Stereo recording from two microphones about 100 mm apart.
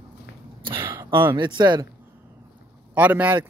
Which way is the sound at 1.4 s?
50° right (ahead or behind).